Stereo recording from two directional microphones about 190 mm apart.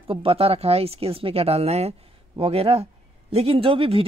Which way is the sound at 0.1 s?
30° right (ahead or behind).